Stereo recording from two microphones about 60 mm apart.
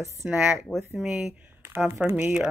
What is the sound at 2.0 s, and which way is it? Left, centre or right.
Speech, centre.